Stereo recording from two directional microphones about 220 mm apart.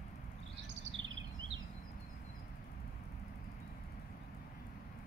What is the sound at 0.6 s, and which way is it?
Chirp, 55° right (ahead or behind).